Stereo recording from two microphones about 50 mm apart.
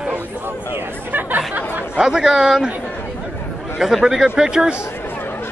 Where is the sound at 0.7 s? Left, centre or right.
Right.